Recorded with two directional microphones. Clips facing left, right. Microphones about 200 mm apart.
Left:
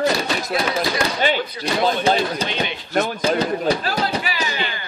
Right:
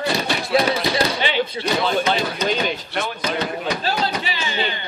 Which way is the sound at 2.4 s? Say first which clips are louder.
Right 4 dB; 40° right (ahead or behind).